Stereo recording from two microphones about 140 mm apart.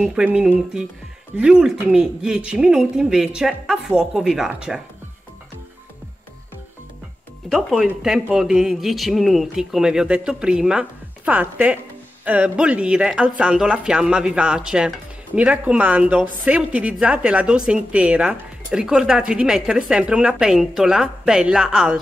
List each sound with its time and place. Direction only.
0.0 s speech: 5° right (ahead or behind)
7.4 s speech: centre (ahead or behind)